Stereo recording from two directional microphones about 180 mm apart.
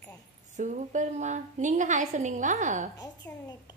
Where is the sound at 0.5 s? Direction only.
45° right (ahead or behind).